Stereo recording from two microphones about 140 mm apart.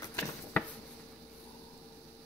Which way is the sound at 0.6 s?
15° left (ahead or behind).